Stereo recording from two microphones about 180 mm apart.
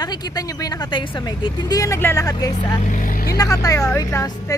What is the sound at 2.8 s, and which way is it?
Vehicle, 45° left (ahead or behind).